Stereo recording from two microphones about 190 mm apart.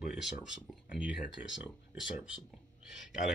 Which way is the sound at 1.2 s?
75° left (ahead or behind).